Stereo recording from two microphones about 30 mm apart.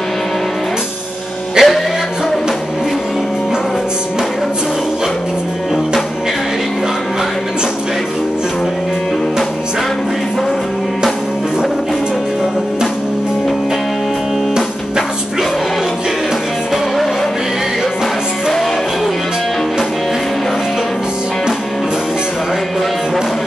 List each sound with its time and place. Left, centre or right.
1.6 s music: centre